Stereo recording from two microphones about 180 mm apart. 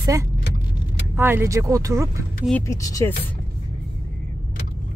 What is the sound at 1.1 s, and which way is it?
Speech, 10° right (ahead or behind).